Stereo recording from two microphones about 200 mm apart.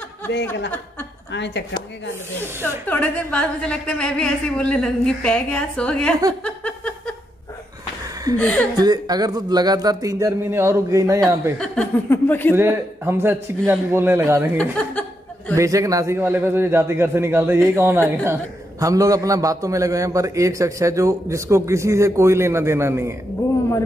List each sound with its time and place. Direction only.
0.3 s speech: 60° left (ahead or behind)
2.9 s a woman's voice: 5° left (ahead or behind)
6.4 s a sound: 5° left (ahead or behind)
8.4 s speech: 5° left (ahead or behind)
8.7 s speech: 20° right (ahead or behind)
11.5 s speech: 5° left (ahead or behind)
12.5 s a man's voice: 10° right (ahead or behind)
14.6 s chuckle: 5° left (ahead or behind)
15.5 s a man's voice: 15° right (ahead or behind)